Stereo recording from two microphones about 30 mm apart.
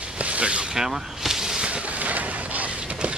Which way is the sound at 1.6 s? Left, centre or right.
Right.